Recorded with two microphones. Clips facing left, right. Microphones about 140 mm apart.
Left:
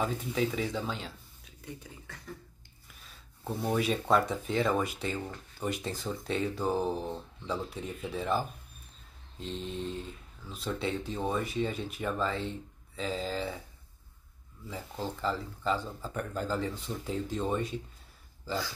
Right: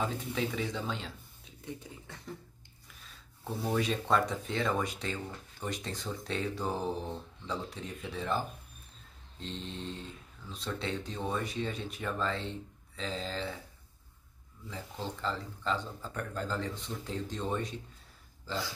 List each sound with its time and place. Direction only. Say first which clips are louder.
0.0 s speech: left 3 dB; centre (ahead or behind)
1.4 s speech: right 2 dB; 25° right (ahead or behind)
3.4 s speech: left 2 dB; 5° left (ahead or behind)
14.7 s speech: left 3 dB; 5° left (ahead or behind)